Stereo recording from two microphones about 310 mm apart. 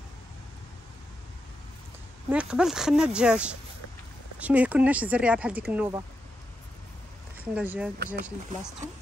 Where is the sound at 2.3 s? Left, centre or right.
Centre.